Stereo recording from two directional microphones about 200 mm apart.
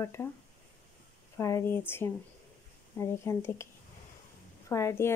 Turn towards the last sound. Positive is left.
turn(degrees=15)  # may be behind; listen again after turning